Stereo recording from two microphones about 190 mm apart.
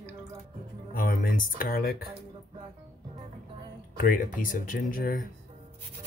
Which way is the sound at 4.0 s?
50° left (ahead or behind).